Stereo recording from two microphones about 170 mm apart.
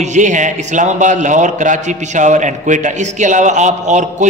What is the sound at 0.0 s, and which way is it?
A man's voice, 45° right (ahead or behind).